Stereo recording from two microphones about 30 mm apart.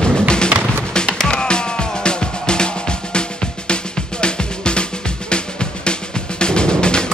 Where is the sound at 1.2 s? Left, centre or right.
Left.